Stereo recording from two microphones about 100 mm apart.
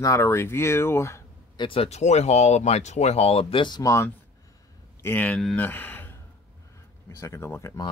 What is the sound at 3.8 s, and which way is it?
Speech, 30° left (ahead or behind).